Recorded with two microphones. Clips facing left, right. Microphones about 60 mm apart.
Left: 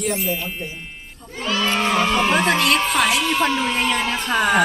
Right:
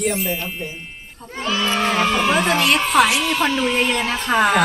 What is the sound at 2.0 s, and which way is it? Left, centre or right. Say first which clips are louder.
Speech: even; centre.